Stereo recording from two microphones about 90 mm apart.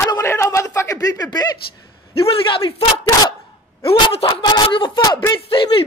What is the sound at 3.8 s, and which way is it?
Speech, 90° left.